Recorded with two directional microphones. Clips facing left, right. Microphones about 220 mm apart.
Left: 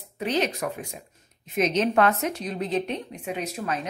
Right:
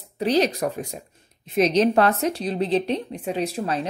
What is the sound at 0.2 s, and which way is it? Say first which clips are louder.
Speech: right 5 dB; 35° right (ahead or behind).